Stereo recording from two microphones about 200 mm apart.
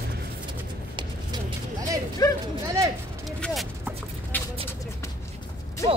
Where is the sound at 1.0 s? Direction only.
20° right (ahead or behind).